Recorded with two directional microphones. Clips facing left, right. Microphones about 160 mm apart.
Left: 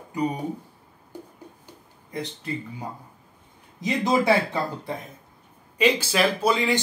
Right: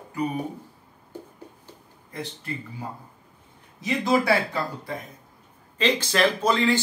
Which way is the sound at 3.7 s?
20° left (ahead or behind).